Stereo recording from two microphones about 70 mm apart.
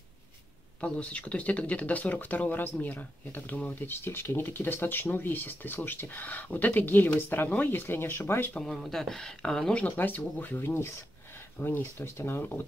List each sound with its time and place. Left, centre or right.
0.7 s speech: centre; by 8.5 s left
8.5 s speech: centre
9.8 s speech: left